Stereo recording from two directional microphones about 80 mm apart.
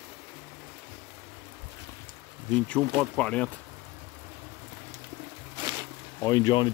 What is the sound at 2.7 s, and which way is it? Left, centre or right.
Speech, centre.